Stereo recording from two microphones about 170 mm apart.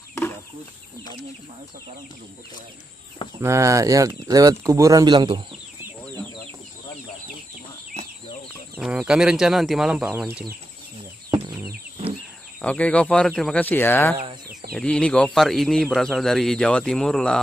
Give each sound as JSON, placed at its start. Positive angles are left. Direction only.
{"t": 3.3, "sound": "speech", "side_deg": -15}
{"t": 8.7, "sound": "a man's voice", "side_deg": -5}
{"t": 11.2, "sound": "a sound", "side_deg": -15}
{"t": 12.6, "sound": "a man's voice", "side_deg": 10}